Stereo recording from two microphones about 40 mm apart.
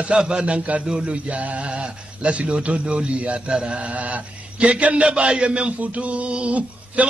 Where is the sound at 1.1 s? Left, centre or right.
Right.